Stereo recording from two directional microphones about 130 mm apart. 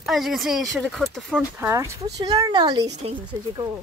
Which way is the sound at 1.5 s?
20° right (ahead or behind).